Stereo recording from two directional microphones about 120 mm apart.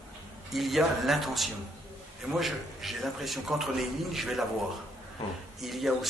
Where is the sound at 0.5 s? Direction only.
Centre (ahead or behind).